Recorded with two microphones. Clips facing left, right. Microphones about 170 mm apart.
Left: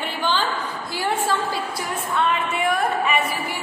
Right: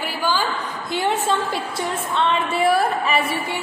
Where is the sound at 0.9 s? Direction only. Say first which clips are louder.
Right 2 dB; 20° right (ahead or behind).